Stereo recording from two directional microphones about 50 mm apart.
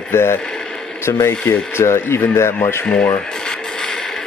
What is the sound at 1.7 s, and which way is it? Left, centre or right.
Speech, left.